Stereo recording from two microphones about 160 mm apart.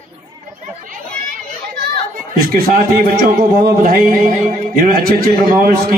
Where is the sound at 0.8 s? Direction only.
55° right (ahead or behind).